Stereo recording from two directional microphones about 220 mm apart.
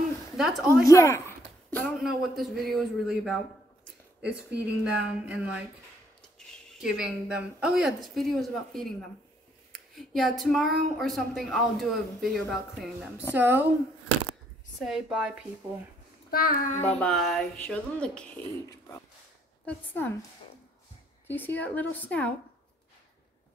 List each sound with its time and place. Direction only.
0.4 s speech: centre (ahead or behind)
0.8 s a man's voice: 15° left (ahead or behind)
4.6 s speech: 5° right (ahead or behind)
6.8 s a woman's voice: 5° right (ahead or behind)
14.8 s speech: centre (ahead or behind)
16.3 s child singing: 45° left (ahead or behind)
16.8 s speech: 5° left (ahead or behind)
19.6 s a woman's voice: 10° left (ahead or behind)
21.5 s a woman's voice: 5° left (ahead or behind)